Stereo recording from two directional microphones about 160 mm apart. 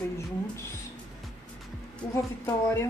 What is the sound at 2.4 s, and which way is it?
Speech, 15° left (ahead or behind).